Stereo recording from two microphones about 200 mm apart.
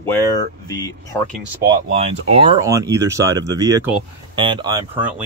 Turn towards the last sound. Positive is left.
turn(degrees=-20)  # may be behind; listen again after turning